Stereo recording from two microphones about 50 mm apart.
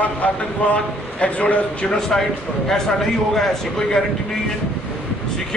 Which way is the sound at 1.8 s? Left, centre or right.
Centre.